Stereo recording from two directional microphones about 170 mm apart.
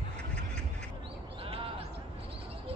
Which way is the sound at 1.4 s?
30° right (ahead or behind).